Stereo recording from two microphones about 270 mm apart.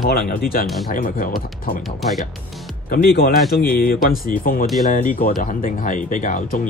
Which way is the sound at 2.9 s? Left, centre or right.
Left.